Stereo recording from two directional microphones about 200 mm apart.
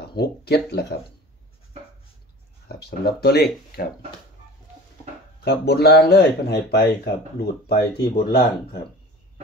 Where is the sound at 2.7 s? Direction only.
55° left (ahead or behind).